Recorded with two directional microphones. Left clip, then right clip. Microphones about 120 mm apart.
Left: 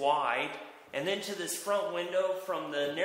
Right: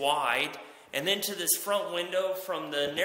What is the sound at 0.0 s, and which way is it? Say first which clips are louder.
A man's voice: right 2 dB; 30° right (ahead or behind).